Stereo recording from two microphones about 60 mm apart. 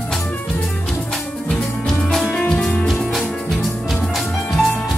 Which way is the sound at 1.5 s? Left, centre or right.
Centre.